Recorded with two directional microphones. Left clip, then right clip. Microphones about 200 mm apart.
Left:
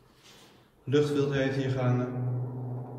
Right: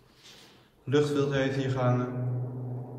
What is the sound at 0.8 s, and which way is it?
A man's voice, 10° right (ahead or behind).